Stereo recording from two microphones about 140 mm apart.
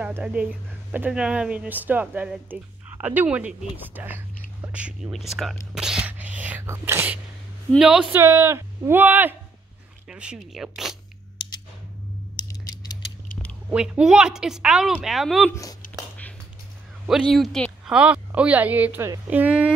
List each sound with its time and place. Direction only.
0.0 s a woman's voice: 10° right (ahead or behind)
5.8 s sneeze: 5° right (ahead or behind)
7.8 s a woman's voice: 5° right (ahead or behind)
12.4 s mechanisms: 30° left (ahead or behind)
13.7 s a woman's voice: 10° right (ahead or behind)
17.0 s speech: centre (ahead or behind)